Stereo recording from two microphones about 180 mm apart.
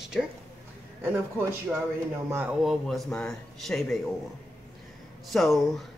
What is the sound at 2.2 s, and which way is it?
A man's voice, 10° right (ahead or behind).